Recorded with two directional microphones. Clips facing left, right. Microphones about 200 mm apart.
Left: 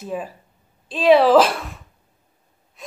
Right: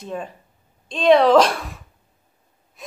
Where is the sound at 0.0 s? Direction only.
5° left (ahead or behind).